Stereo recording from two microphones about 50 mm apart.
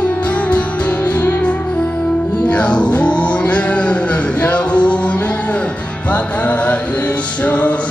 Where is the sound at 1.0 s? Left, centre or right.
Left.